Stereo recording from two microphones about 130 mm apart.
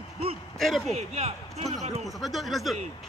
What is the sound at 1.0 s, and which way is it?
Hoot, 55° right (ahead or behind).